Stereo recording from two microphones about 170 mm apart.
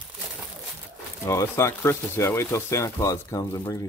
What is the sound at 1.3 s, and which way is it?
Speech, 15° left (ahead or behind).